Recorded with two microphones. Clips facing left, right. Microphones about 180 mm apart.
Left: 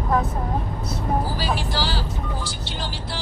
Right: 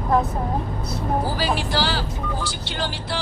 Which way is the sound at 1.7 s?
70° right (ahead or behind).